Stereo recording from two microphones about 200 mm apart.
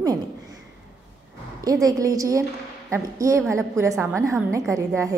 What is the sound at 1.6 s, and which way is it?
A woman's voice, 20° right (ahead or behind).